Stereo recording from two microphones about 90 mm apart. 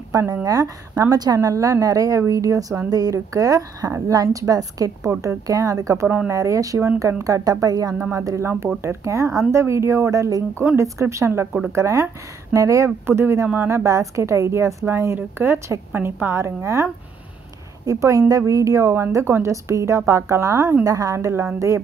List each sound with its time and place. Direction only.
0.1 s a woman's voice: 35° right (ahead or behind)
8.1 s a woman's voice: 35° right (ahead or behind)